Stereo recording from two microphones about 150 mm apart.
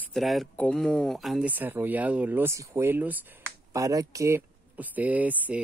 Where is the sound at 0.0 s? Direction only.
Centre (ahead or behind).